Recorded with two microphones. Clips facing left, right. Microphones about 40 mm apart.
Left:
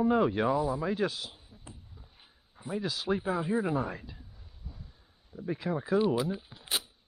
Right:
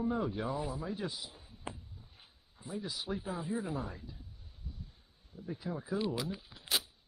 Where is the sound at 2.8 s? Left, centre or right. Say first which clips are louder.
Left 7 dB; left.